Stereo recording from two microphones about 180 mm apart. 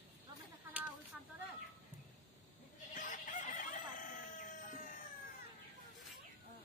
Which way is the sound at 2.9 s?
45° left (ahead or behind).